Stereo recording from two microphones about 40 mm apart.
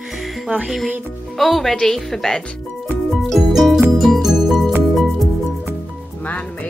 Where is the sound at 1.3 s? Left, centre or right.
Centre.